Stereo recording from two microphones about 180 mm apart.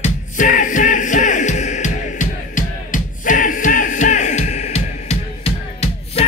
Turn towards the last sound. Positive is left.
turn(degrees=35)  # may be behind; listen again after turning